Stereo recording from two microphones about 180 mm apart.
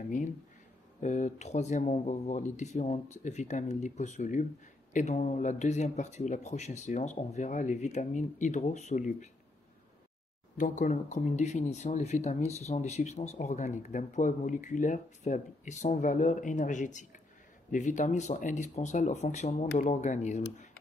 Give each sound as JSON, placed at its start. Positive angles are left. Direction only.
{"t": 1.0, "sound": "speech", "side_deg": 40}
{"t": 10.6, "sound": "speech", "side_deg": 45}